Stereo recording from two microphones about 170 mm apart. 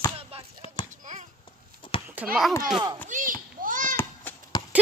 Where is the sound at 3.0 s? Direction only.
50° right (ahead or behind).